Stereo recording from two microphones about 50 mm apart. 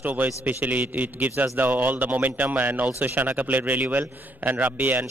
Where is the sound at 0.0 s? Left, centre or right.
Right.